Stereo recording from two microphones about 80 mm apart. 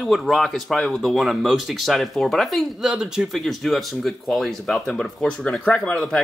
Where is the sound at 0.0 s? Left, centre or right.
Centre.